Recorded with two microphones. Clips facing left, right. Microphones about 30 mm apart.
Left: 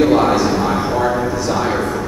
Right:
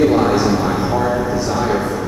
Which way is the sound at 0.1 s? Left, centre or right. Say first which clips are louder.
Left 1 dB; centre.